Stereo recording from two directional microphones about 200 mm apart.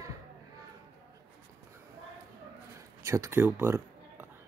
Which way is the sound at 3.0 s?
15° right (ahead or behind).